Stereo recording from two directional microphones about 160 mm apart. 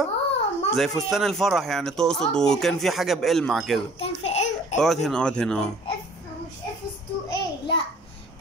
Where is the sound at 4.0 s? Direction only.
45° left (ahead or behind).